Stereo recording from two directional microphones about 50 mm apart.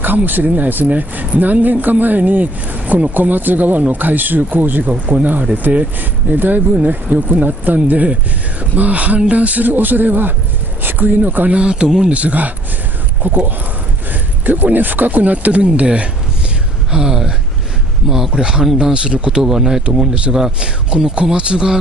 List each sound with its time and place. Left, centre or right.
0.0 s speech: right
11.5 s speech: centre
12.2 s speech: right
19.4 s speech: centre
20.6 s speech: right